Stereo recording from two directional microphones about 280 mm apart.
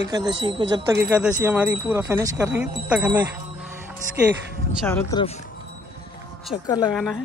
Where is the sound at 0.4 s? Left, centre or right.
Centre.